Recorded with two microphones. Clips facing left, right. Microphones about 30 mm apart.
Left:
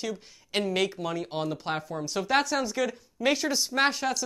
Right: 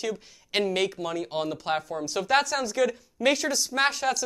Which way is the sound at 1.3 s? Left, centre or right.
Centre.